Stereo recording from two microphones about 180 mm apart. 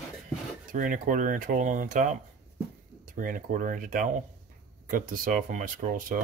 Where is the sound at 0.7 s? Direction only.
50° right (ahead or behind).